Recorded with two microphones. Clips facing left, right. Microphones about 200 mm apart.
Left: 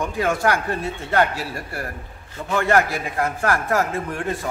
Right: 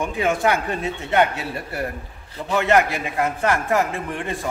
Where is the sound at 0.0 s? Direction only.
20° right (ahead or behind).